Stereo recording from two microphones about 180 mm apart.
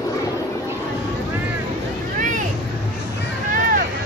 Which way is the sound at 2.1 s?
45° right (ahead or behind).